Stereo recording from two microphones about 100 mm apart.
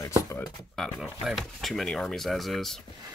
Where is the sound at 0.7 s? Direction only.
5° left (ahead or behind).